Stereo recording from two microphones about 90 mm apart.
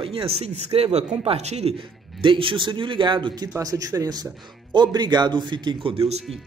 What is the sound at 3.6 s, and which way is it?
Speech, 40° right (ahead or behind).